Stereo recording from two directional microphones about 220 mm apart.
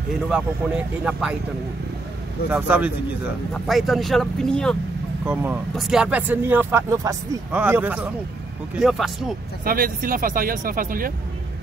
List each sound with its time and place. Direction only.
0.1 s speech: 5° right (ahead or behind)
2.5 s speech: 5° right (ahead or behind)
5.2 s speech: 5° right (ahead or behind)
9.7 s speech: 40° right (ahead or behind)